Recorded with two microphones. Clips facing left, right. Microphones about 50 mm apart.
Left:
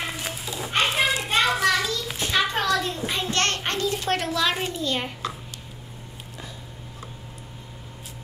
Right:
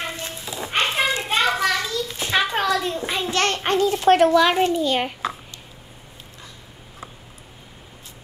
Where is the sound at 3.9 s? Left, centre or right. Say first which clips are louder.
Right 11 dB; centre.